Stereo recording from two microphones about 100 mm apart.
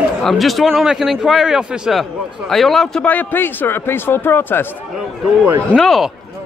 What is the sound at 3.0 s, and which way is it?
Speech, 20° left (ahead or behind).